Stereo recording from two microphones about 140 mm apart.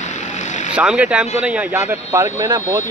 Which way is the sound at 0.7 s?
10° right (ahead or behind).